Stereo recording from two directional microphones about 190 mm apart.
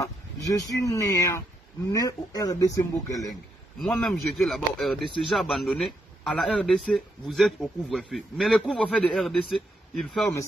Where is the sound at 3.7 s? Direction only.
Centre (ahead or behind).